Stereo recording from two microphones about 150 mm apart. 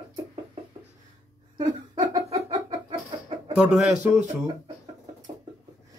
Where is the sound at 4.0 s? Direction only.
50° right (ahead or behind).